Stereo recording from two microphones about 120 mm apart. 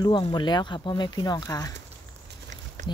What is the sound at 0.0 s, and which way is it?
Speech, 40° left (ahead or behind).